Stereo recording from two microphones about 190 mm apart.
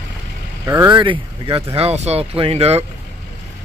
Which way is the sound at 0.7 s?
20° right (ahead or behind).